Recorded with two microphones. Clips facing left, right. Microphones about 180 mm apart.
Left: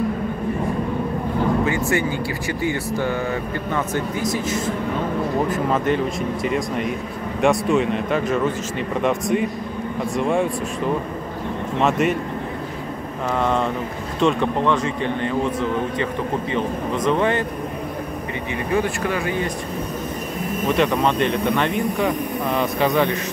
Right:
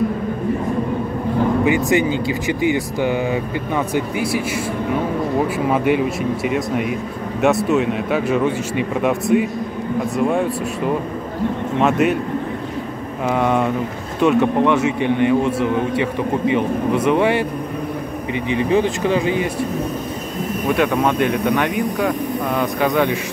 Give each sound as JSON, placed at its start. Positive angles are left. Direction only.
{"t": 1.6, "sound": "speech", "side_deg": -15}
{"t": 11.8, "sound": "speech", "side_deg": 0}
{"t": 13.3, "sound": "speech", "side_deg": -10}
{"t": 18.5, "sound": "speech", "side_deg": -20}
{"t": 20.6, "sound": "speech", "side_deg": -5}